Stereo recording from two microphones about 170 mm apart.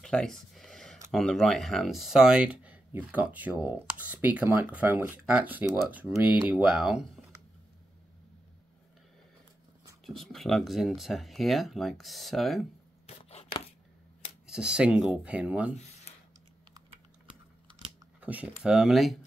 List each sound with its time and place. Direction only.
0.0 s a sound: centre (ahead or behind)
1.1 s speech: centre (ahead or behind)
10.0 s speech: centre (ahead or behind)
13.0 s chopping: 35° left (ahead or behind)
14.4 s speech: 5° right (ahead or behind)
18.2 s speech: 10° right (ahead or behind)